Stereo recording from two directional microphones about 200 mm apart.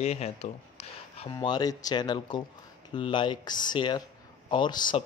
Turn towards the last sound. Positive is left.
turn(degrees=20)  # may be behind; listen again after turning